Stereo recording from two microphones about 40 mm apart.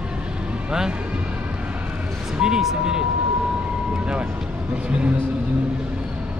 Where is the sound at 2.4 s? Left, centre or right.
Centre.